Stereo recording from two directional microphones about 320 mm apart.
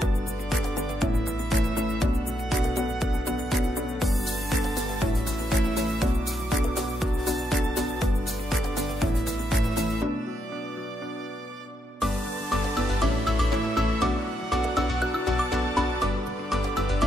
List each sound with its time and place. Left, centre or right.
2.5 s music: centre
5.8 s music: centre
13.7 s music: centre